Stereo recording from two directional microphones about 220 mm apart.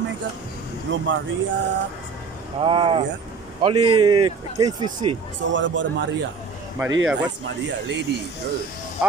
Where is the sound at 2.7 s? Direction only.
25° right (ahead or behind).